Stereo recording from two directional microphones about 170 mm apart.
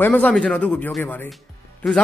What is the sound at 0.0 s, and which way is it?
Speech, 10° left (ahead or behind).